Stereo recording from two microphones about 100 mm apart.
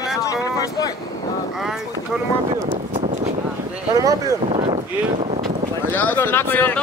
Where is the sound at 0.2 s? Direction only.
35° left (ahead or behind).